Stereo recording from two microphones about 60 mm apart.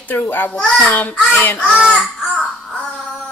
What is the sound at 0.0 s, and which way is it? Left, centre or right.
A child's voice, left.